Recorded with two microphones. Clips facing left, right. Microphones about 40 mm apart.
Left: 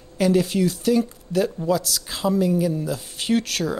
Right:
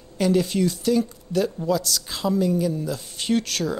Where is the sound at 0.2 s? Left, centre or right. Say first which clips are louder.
Left 1 dB; centre.